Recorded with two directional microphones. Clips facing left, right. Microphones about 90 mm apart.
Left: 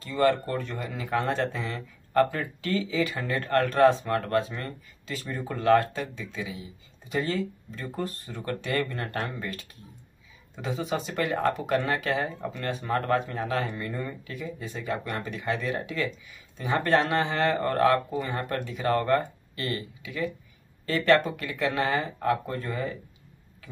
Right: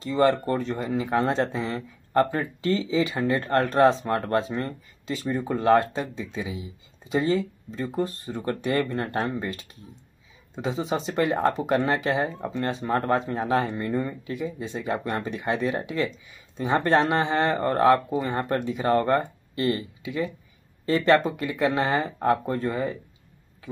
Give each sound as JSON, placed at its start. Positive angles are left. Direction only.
{"t": 0.0, "sound": "speech", "side_deg": -25}